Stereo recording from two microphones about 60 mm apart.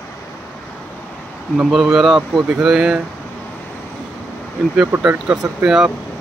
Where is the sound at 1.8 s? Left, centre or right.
Centre.